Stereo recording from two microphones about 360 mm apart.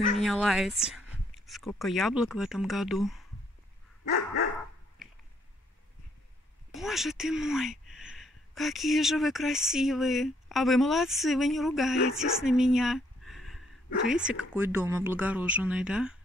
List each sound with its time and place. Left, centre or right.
0.2 s speech: centre
6.7 s speech: centre